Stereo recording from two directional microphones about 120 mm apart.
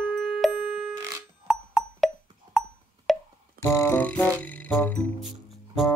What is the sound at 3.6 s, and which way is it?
Music, 25° left (ahead or behind).